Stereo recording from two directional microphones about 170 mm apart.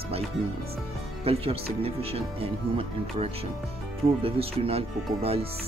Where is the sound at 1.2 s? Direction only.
35° right (ahead or behind).